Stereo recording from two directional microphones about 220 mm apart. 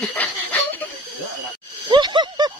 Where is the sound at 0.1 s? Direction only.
5° left (ahead or behind).